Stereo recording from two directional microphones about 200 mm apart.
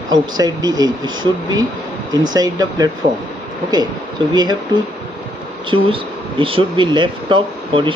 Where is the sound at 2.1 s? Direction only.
20° right (ahead or behind).